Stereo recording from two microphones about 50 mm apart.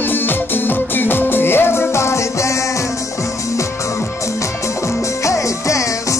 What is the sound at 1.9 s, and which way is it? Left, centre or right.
Music, left.